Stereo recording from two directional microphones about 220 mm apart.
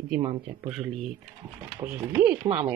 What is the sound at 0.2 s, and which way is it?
Speech, 25° right (ahead or behind).